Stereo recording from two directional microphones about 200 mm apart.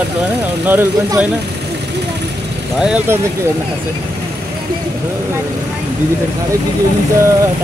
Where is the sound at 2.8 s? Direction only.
5° right (ahead or behind).